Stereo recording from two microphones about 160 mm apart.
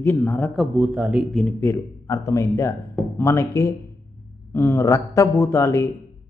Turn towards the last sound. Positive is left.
turn(degrees=15)  # may be behind; listen again after turning